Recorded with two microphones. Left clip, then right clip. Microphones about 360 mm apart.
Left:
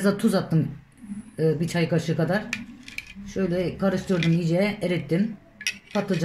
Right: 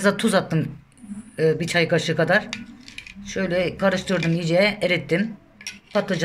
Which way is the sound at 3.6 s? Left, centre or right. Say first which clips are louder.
Right 7 dB; right.